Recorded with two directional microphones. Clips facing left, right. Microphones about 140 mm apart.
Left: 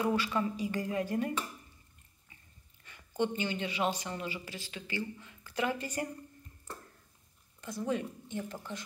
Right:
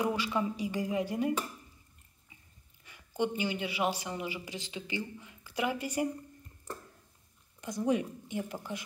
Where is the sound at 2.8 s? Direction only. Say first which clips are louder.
Even; 10° right (ahead or behind).